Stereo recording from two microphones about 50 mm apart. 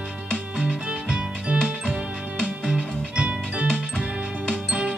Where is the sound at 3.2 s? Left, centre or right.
Right.